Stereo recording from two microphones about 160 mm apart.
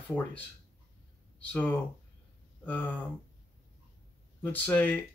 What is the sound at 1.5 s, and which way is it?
Speech, 10° left (ahead or behind).